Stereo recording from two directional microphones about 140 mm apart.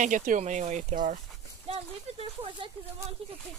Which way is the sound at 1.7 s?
45° right (ahead or behind).